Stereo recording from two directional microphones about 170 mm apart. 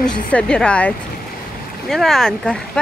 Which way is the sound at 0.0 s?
5° left (ahead or behind).